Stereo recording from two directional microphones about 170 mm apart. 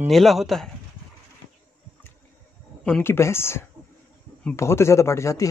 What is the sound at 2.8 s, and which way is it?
Speech, 10° left (ahead or behind).